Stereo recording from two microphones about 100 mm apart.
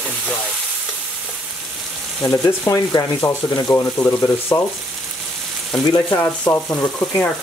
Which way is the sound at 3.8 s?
20° left (ahead or behind).